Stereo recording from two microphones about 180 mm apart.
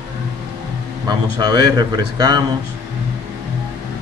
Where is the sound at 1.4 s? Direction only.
25° right (ahead or behind).